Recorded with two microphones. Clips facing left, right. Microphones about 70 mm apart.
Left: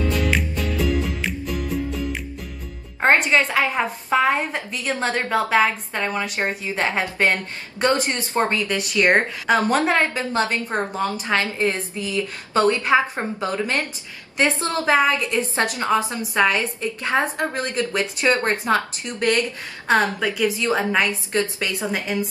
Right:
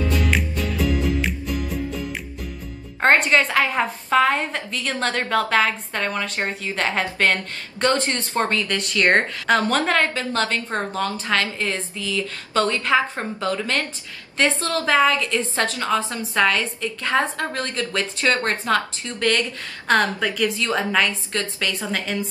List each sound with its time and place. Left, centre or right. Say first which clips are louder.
0.0 s music: even; centre
3.0 s a woman's voice: even; centre; by 19.4 s left
19.9 s a woman's voice: even; centre
20.6 s a woman's voice: left 1 dB; left